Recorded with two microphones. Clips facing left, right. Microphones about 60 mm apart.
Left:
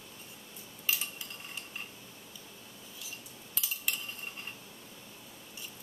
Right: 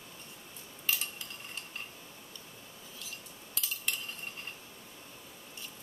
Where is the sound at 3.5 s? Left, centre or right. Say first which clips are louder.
Even; centre.